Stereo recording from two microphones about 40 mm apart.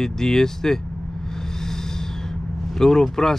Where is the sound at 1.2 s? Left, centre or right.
Centre.